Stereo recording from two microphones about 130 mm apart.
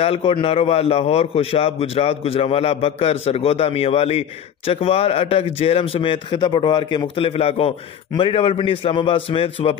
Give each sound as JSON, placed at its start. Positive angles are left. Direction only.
{"t": 0.0, "sound": "a man's voice", "side_deg": 45}